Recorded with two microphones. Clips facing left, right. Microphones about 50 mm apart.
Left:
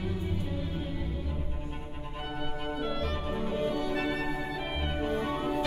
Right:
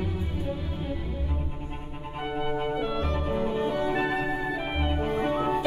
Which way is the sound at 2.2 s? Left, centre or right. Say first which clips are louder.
Right 8 dB; right.